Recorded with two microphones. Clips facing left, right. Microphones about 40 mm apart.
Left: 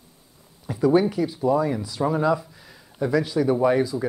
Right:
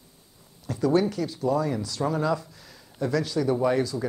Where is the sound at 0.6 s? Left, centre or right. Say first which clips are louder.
Left 4 dB; centre.